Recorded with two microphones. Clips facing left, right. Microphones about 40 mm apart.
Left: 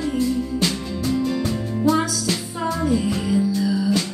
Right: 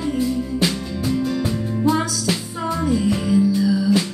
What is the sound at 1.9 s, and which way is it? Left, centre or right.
Music, right.